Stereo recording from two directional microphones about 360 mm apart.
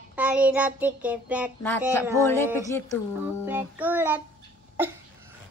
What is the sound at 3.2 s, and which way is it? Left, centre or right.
Child singing, centre.